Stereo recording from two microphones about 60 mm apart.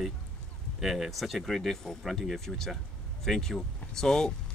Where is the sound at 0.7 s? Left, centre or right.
Centre.